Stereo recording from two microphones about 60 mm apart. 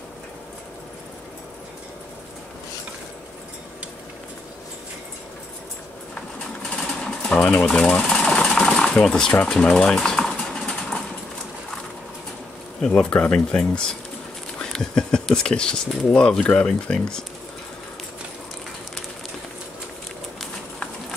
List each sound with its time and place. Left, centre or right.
6.8 s sewing machine: centre
7.3 s a sound: left
7.6 s speech: centre
8.5 s sewing machine: centre
9.5 s a sound: centre
12.8 s speech: centre